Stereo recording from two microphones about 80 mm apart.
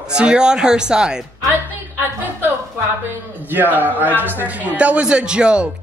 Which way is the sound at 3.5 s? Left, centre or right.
Right.